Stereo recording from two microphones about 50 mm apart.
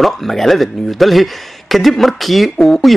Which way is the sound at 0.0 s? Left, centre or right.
Centre.